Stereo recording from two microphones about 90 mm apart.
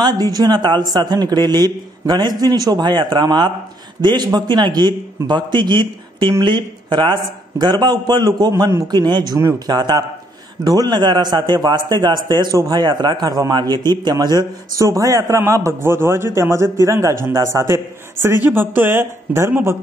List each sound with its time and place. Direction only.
0.0 s a man's voice: 50° right (ahead or behind); by 19.8 s 30° right (ahead or behind)